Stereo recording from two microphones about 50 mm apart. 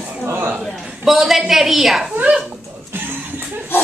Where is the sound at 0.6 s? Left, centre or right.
Centre.